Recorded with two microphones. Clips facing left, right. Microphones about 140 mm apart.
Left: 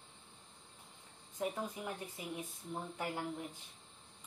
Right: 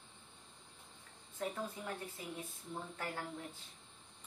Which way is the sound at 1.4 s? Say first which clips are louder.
Left 2 dB; 15° left (ahead or behind).